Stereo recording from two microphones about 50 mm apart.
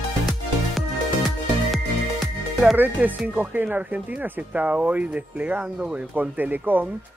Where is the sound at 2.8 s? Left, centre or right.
Right.